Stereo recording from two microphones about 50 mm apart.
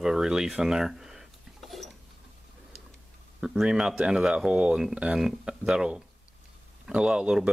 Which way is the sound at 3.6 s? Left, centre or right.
Centre.